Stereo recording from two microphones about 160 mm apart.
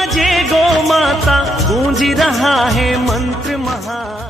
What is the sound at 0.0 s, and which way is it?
Music, centre (ahead or behind).